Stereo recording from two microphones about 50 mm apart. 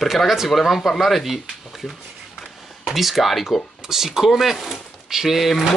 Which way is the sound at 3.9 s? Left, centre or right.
Centre.